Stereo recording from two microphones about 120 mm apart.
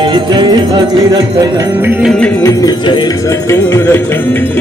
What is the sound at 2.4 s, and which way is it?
Music, 30° left (ahead or behind).